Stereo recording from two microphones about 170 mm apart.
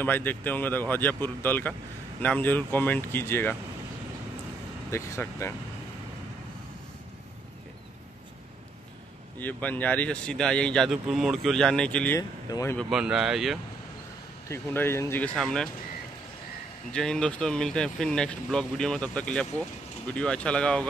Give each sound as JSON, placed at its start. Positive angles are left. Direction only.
{"t": 0.0, "sound": "speech", "side_deg": 10}
{"t": 4.9, "sound": "speech", "side_deg": 15}
{"t": 9.4, "sound": "speech", "side_deg": 10}
{"t": 12.2, "sound": "speech", "side_deg": 20}
{"t": 12.7, "sound": "speech", "side_deg": -5}
{"t": 14.5, "sound": "speech", "side_deg": 15}
{"t": 16.9, "sound": "speech", "side_deg": 5}